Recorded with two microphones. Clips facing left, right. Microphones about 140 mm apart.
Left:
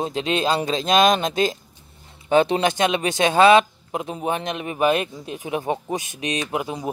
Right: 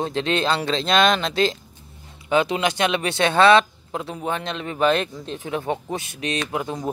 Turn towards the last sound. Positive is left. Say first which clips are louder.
# even
turn(degrees=15)  # may be behind; listen again after turning